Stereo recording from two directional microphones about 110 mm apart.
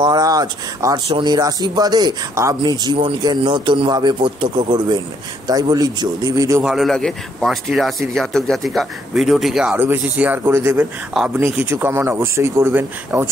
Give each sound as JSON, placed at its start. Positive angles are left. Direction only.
{"t": 0.0, "sound": "a man's voice", "side_deg": -35}
{"t": 6.6, "sound": "speech", "side_deg": 0}
{"t": 9.8, "sound": "speech", "side_deg": -15}
{"t": 11.1, "sound": "speech", "side_deg": 0}
{"t": 11.6, "sound": "speech", "side_deg": -20}